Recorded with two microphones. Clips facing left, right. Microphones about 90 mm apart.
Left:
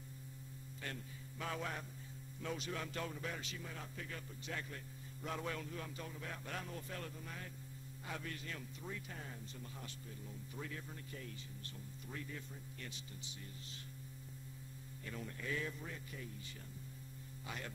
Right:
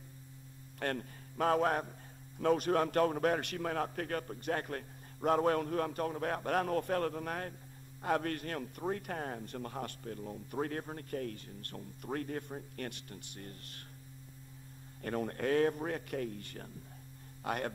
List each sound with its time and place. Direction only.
0.7 s a man's voice: 60° right (ahead or behind)
15.0 s a man's voice: 55° right (ahead or behind)